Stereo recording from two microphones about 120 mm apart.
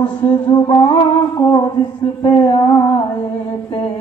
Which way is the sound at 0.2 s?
40° left (ahead or behind).